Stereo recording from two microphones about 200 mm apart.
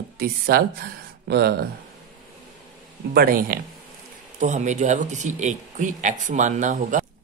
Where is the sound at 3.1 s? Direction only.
45° right (ahead or behind).